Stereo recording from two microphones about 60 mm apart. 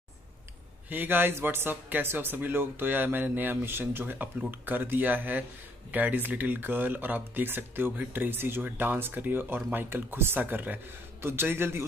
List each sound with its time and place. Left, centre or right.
0.8 s a man's voice: right
11.1 s a man's voice: right